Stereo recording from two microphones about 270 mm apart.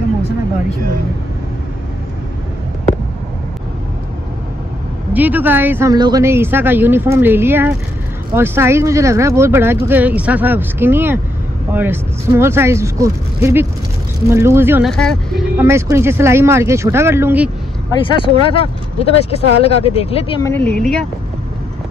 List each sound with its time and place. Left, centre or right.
5.1 s speech: centre
15.5 s speech: centre
18.0 s speech: centre
20.4 s speech: centre